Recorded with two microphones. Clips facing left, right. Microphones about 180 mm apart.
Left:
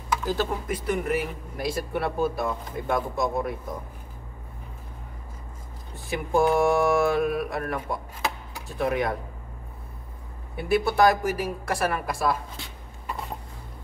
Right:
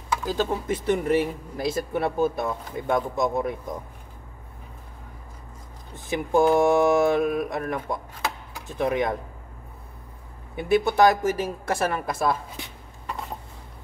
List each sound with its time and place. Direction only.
0.2 s speech: 15° right (ahead or behind)
0.7 s speech: 25° right (ahead or behind)
5.9 s speech: 20° right (ahead or behind)
10.5 s speech: 20° right (ahead or behind)